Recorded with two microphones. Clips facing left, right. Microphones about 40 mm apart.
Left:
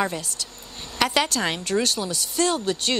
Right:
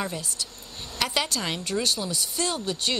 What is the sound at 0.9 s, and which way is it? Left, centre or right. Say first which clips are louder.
Speech: left 5 dB; left.